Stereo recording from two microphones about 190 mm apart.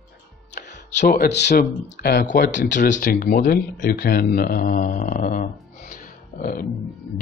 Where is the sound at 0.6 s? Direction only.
65° left (ahead or behind).